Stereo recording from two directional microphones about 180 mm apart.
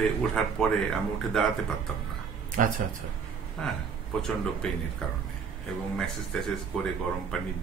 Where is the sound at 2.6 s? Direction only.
45° right (ahead or behind).